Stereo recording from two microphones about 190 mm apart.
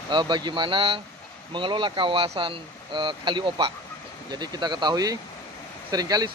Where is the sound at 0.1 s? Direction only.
25° right (ahead or behind).